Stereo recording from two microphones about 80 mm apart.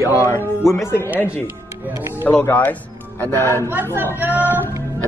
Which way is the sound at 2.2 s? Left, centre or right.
Left.